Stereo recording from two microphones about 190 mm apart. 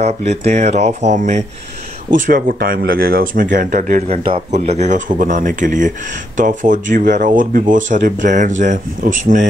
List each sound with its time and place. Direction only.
0.0 s speech: 35° right (ahead or behind)